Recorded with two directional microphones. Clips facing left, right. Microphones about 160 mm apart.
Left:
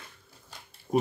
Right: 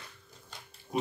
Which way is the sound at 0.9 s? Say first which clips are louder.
Left 6 dB; 50° left (ahead or behind).